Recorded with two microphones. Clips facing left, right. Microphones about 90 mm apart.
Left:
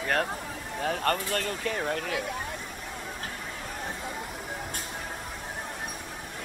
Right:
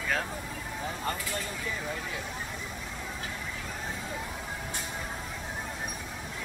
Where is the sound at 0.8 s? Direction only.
70° left (ahead or behind).